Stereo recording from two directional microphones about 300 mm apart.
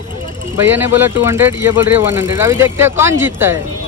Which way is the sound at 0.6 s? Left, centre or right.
Centre.